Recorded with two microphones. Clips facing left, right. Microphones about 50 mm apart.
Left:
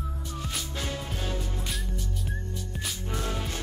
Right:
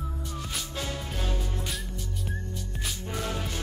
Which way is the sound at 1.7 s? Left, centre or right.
Centre.